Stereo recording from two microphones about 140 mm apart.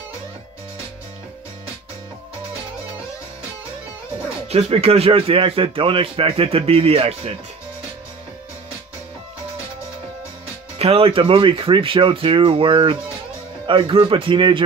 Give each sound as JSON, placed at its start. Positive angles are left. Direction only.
{"t": 4.5, "sound": "speech", "side_deg": -45}
{"t": 10.8, "sound": "speech", "side_deg": -45}